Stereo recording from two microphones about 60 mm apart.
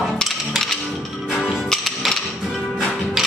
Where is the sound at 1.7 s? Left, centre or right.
Centre.